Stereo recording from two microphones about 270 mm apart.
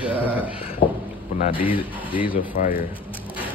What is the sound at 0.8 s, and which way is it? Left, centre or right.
Speech, centre.